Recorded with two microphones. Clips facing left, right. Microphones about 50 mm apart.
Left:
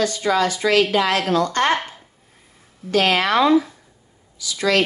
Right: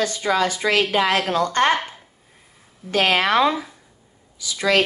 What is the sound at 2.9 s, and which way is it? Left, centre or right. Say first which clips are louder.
Speech: left 1 dB; right.